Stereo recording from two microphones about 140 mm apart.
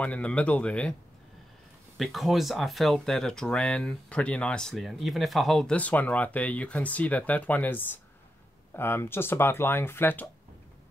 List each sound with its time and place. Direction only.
0.0 s speech: 10° left (ahead or behind)
2.0 s speech: centre (ahead or behind); by 10.2 s 15° left (ahead or behind)